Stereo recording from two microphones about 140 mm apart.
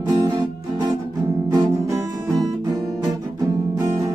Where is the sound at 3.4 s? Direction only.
25° right (ahead or behind).